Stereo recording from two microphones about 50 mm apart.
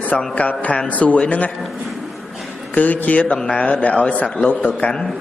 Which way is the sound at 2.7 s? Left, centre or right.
Left.